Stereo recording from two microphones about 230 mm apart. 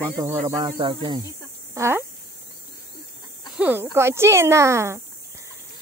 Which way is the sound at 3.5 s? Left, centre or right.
Centre.